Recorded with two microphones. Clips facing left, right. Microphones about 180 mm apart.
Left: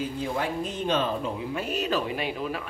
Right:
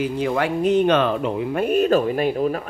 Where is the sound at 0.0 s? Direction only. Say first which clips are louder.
Right 7 dB; 75° right (ahead or behind).